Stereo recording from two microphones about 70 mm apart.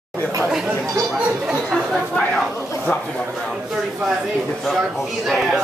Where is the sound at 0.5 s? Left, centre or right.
Centre.